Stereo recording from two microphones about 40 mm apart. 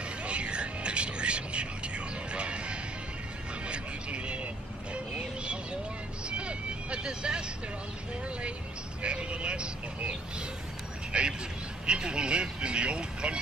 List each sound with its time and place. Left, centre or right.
0.0 s music: right
3.6 s vehicle: right
4.9 s a sound: right
6.2 s vehicle: right
9.0 s vehicle: right
11.1 s a sound: right
11.8 s vehicle: right